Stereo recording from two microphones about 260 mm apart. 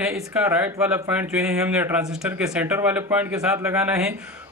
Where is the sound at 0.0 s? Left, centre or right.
Centre.